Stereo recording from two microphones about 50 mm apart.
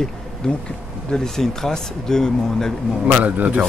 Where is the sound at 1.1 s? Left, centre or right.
Centre.